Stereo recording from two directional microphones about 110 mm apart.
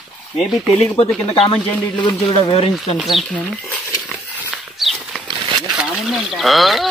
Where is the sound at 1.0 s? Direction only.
65° left (ahead or behind).